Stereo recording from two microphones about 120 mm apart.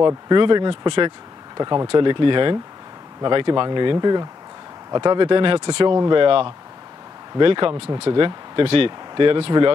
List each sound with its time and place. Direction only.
0.0 s speech: 40° right (ahead or behind)